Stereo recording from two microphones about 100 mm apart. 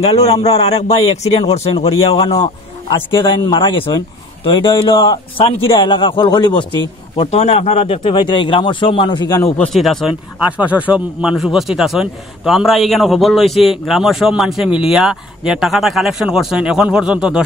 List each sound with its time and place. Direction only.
0.0 s a man's voice: 85° left; by 2.3 s 70° left (ahead or behind)
3.1 s speech: 55° left (ahead or behind)
5.4 s a man's voice: 65° left (ahead or behind)
5.8 s speech: 55° left (ahead or behind)
7.2 s speech: 90° left; by 9.4 s 50° left (ahead or behind)
9.7 s a man's voice: centre (ahead or behind)
10.6 s a man's voice: 15° right (ahead or behind)